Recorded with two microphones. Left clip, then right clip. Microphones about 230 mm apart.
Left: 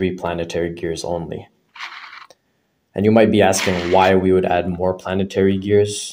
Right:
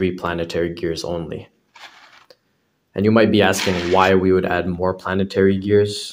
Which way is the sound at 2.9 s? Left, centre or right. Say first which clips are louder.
Left 2 dB; centre.